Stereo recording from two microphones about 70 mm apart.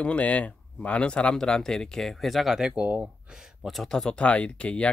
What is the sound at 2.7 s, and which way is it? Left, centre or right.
Speech, centre.